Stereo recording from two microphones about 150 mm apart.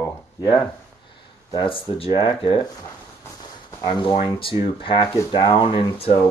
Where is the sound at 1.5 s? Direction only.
35° left (ahead or behind).